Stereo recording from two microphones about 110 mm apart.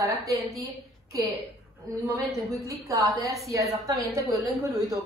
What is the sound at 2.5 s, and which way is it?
A woman's voice, 30° right (ahead or behind).